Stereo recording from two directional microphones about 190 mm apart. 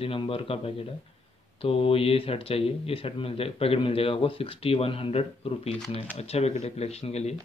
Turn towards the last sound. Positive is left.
turn(degrees=35)  # may be behind; listen again after turning